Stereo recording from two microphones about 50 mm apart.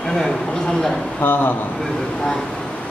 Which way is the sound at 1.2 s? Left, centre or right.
Left.